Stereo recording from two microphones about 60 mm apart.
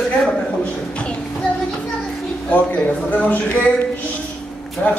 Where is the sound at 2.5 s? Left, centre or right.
Left.